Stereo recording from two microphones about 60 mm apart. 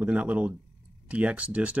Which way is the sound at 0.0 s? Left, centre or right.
Right.